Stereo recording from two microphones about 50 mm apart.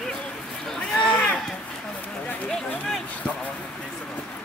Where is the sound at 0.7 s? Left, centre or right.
Left.